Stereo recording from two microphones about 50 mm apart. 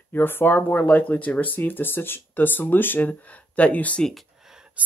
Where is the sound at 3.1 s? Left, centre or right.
Left.